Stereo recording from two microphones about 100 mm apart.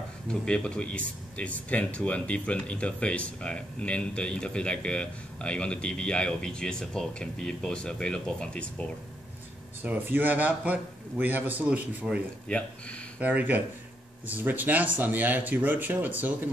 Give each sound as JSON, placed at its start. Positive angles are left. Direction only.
{"t": 0.3, "sound": "speech", "side_deg": 10}
{"t": 9.8, "sound": "a man's voice", "side_deg": -20}
{"t": 12.4, "sound": "speech", "side_deg": 10}
{"t": 13.2, "sound": "a man's voice", "side_deg": -15}